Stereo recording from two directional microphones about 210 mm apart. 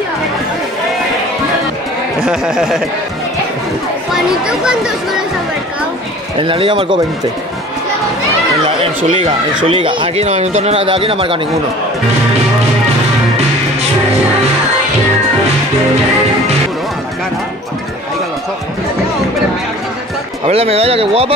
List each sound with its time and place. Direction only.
2.2 s speech: 5° right (ahead or behind)
4.1 s speech: 5° right (ahead or behind)
6.3 s speech: 25° right (ahead or behind)
8.6 s speech: 25° right (ahead or behind)
20.4 s speech: 30° right (ahead or behind)